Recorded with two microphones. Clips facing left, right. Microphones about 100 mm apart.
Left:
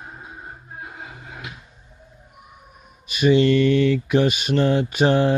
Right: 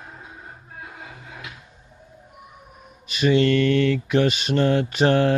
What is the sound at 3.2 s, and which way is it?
Speech, 15° left (ahead or behind).